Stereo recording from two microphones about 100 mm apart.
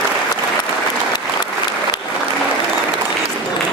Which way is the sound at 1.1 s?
45° left (ahead or behind).